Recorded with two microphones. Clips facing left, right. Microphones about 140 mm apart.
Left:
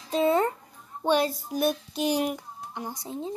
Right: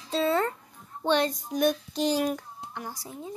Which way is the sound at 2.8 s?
20° left (ahead or behind).